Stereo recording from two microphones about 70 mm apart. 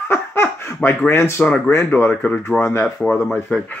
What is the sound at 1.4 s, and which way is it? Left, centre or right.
Speech, centre.